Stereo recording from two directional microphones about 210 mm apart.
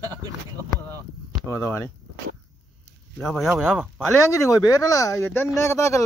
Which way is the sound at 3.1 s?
Centre (ahead or behind).